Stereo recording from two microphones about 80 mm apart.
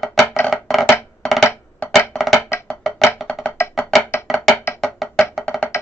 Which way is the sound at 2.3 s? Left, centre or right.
Left.